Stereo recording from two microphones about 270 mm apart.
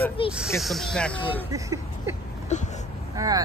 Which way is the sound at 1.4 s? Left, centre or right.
Centre.